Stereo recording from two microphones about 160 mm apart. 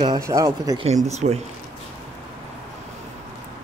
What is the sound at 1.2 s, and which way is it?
Speech, 45° right (ahead or behind).